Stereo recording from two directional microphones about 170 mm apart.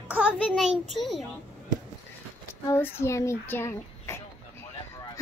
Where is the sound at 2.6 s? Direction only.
15° left (ahead or behind).